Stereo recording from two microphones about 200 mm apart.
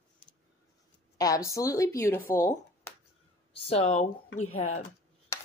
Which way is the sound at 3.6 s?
30° left (ahead or behind).